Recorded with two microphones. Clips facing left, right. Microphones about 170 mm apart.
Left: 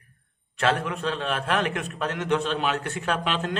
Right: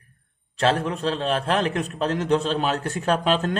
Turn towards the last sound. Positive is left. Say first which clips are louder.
# right 5 dB
turn(degrees=-40)  # may be behind; listen again after turning